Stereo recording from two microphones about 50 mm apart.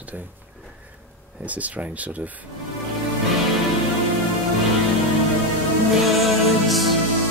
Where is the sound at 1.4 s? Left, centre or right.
Right.